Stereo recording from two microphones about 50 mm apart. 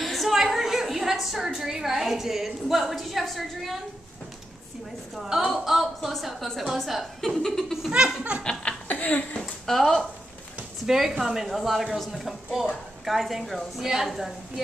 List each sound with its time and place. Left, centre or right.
0.0 s a woman's voice: centre
5.1 s speech: centre
8.8 s a sound: left
9.4 s speech: centre